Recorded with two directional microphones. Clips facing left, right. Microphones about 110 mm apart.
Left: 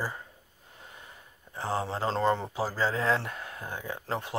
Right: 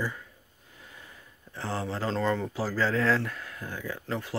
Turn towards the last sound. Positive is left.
turn(degrees=30)  # may be behind; listen again after turning